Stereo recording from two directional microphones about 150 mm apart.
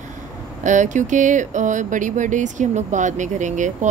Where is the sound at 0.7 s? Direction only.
55° right (ahead or behind).